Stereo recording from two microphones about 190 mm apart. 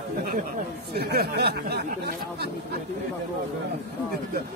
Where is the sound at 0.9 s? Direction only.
55° right (ahead or behind).